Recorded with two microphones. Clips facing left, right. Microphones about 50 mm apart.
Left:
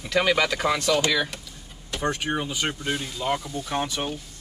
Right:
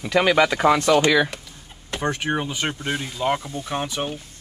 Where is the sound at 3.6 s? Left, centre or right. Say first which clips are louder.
Right 1 dB; centre.